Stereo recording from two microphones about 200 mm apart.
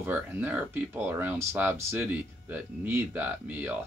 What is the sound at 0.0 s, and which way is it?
Speech, 10° right (ahead or behind).